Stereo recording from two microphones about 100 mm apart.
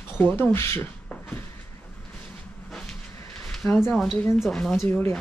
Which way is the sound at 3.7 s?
25° left (ahead or behind).